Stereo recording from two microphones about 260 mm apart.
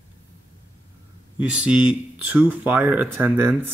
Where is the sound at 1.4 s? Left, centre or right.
Centre.